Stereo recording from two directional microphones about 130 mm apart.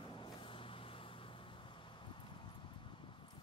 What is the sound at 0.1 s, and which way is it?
Vehicle, 40° left (ahead or behind).